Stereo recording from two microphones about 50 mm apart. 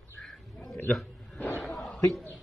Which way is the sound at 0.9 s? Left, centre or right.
Centre.